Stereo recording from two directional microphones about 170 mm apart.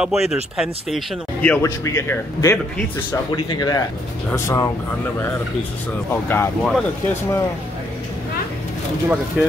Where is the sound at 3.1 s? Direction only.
25° left (ahead or behind).